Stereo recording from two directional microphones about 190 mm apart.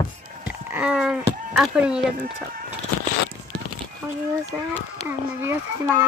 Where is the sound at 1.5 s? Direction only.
5° right (ahead or behind).